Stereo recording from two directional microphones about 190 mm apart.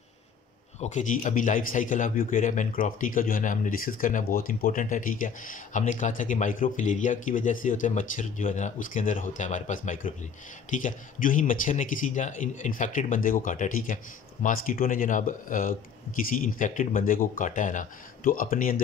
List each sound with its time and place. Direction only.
0.7 s speech: 40° left (ahead or behind)